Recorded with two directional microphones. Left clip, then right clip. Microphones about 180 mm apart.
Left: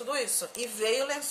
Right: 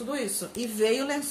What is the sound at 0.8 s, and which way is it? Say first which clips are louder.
Speech: right 3 dB; 10° left (ahead or behind).